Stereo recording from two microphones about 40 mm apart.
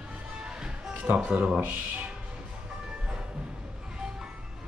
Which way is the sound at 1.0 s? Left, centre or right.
Right.